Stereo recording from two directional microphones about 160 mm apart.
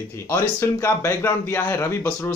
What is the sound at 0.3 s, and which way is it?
A man's voice, 15° left (ahead or behind).